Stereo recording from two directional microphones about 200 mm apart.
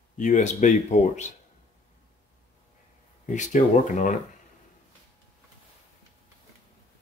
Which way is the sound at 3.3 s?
40° left (ahead or behind).